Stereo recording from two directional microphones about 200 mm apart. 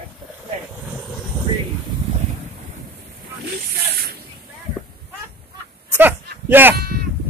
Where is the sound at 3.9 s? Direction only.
50° right (ahead or behind).